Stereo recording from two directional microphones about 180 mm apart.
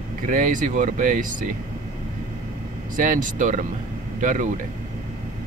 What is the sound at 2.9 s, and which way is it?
Speech, 45° right (ahead or behind).